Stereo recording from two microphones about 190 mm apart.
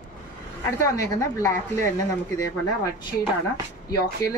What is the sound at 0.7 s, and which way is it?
Speech, 15° left (ahead or behind).